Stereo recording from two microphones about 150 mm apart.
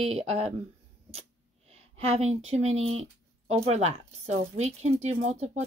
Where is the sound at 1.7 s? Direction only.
40° right (ahead or behind).